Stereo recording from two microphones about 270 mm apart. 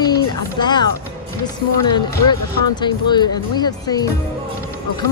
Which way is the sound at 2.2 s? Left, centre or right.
Centre.